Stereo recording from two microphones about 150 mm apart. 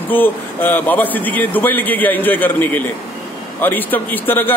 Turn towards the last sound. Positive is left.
turn(degrees=15)  # may be behind; listen again after turning